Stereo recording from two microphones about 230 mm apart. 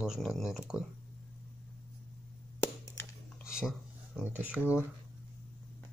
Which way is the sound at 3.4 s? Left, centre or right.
Centre.